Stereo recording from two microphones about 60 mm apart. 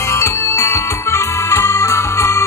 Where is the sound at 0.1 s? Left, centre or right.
Left.